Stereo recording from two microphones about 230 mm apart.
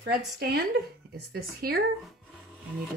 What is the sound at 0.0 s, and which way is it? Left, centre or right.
Speech, right.